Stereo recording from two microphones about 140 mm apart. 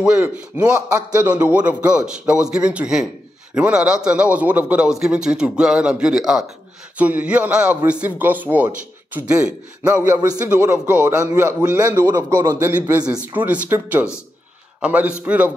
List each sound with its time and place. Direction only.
0.0 s a man's voice: 5° right (ahead or behind)
0.8 s a man's voice: 20° right (ahead or behind)
1.4 s a man's voice: 10° right (ahead or behind)
12.9 s a man's voice: 10° right (ahead or behind)